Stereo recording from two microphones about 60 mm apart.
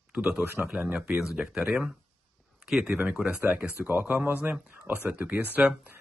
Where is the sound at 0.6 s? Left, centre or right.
Centre.